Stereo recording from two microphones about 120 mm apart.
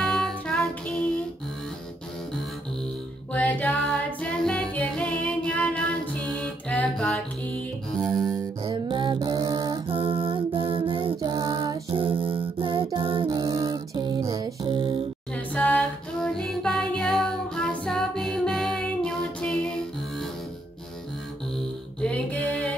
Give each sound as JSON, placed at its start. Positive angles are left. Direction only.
{"t": 0.0, "sound": "music", "side_deg": 5}
{"t": 3.3, "sound": "music", "side_deg": 10}
{"t": 8.6, "sound": "a sound", "side_deg": -45}
{"t": 9.8, "sound": "music", "side_deg": -50}
{"t": 11.1, "sound": "female singing", "side_deg": -35}
{"t": 11.9, "sound": "music", "side_deg": -50}
{"t": 13.3, "sound": "music", "side_deg": -30}
{"t": 14.6, "sound": "music", "side_deg": -45}
{"t": 15.3, "sound": "music", "side_deg": 10}
{"t": 22.0, "sound": "a sound", "side_deg": 10}